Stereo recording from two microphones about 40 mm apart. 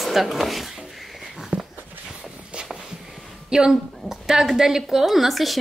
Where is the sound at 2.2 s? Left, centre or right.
Right.